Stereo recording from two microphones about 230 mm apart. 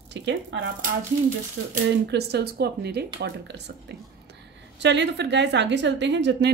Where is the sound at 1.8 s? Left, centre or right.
Right.